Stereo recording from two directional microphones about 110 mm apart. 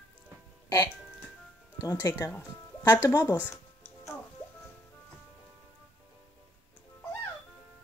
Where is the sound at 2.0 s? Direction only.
30° left (ahead or behind).